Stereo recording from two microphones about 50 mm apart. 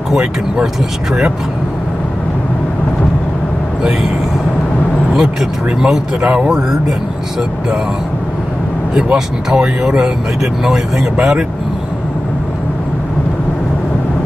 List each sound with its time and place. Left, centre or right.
0.1 s speech: centre
5.1 s speech: centre
6.2 s speech: right
8.9 s speech: centre